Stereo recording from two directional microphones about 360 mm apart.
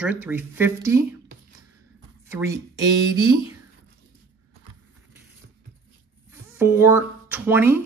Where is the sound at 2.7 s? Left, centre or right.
Right.